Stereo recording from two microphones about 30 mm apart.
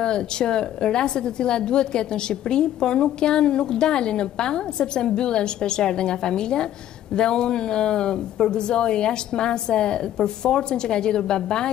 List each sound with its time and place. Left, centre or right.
0.0 s a woman's voice: left